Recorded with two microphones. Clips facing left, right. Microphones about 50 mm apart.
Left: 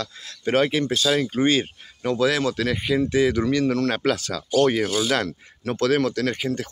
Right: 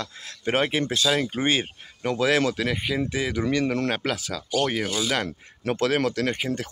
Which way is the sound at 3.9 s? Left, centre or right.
Centre.